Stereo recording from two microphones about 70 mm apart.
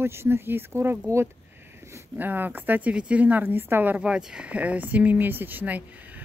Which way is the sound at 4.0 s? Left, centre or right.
Centre.